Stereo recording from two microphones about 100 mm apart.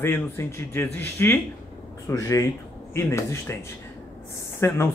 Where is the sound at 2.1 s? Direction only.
30° left (ahead or behind).